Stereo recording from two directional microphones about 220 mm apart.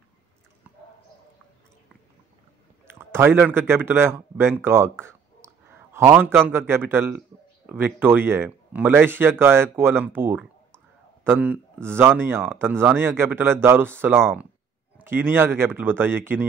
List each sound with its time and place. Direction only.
2.9 s speech: 10° right (ahead or behind)